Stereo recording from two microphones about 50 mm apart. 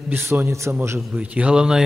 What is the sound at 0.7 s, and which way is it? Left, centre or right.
Speech, right.